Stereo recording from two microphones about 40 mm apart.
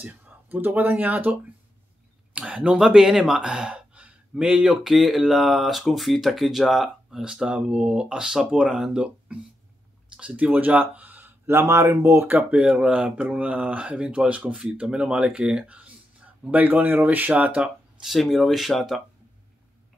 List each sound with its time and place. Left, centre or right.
0.0 s speech: right
2.3 s speech: right
3.0 s speech: centre
4.8 s speech: centre
7.5 s speech: right
10.5 s speech: right
11.4 s speech: right
12.4 s speech: right
14.8 s speech: right
16.8 s speech: right
18.0 s speech: centre